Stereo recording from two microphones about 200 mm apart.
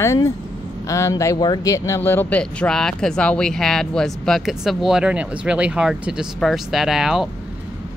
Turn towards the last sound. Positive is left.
turn(degrees=0)  # may be behind; listen again after turning